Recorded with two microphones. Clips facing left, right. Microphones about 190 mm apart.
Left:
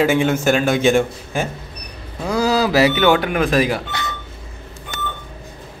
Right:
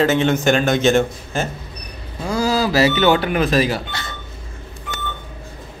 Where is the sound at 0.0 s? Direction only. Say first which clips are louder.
Even; 10° left (ahead or behind).